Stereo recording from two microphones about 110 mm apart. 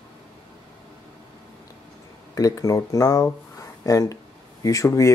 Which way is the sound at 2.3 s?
30° left (ahead or behind).